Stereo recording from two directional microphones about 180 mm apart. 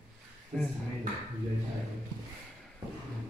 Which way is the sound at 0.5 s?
5° left (ahead or behind).